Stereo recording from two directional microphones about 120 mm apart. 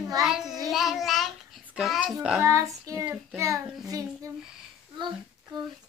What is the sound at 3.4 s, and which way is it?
Child singing, 25° right (ahead or behind).